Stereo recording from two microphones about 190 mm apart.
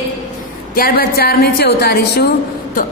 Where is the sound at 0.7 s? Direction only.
50° left (ahead or behind).